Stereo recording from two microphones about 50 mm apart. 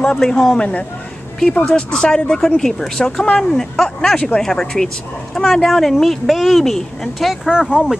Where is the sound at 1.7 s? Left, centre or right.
Centre.